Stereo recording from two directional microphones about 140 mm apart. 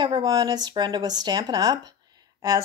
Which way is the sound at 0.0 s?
30° right (ahead or behind).